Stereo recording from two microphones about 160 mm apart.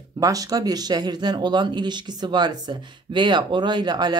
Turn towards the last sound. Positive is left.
turn(degrees=-25)  # may be behind; listen again after turning